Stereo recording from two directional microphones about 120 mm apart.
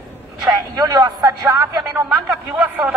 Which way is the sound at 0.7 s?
30° right (ahead or behind).